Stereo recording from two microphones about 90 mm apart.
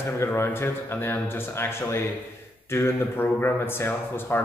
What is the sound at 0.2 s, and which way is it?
A man's voice, 25° left (ahead or behind).